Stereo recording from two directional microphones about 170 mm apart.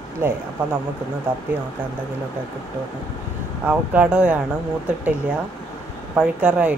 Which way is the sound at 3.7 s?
10° right (ahead or behind).